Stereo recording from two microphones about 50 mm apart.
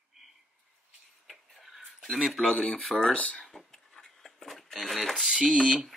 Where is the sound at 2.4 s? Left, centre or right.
Left.